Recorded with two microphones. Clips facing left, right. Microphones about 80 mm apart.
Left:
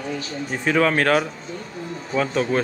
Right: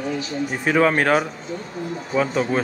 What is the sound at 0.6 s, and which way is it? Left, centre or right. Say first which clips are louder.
A woman's voice: right 1 dB; centre.